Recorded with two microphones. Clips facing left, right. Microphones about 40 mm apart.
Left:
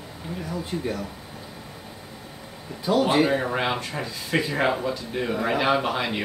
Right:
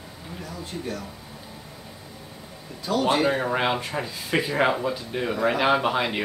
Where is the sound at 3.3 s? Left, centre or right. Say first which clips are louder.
Right 1 dB; centre.